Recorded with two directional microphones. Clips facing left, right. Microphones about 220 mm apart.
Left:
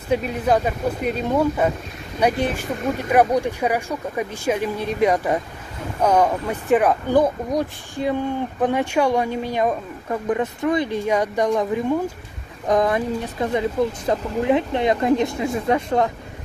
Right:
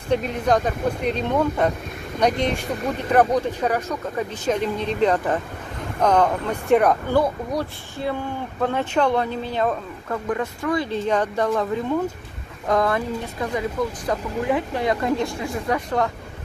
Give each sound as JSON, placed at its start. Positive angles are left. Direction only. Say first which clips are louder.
{"t": 0.1, "sound": "speech", "louder": "left 1 dB", "side_deg": 5}
{"t": 7.1, "sound": "speech", "louder": "left 3 dB", "side_deg": 15}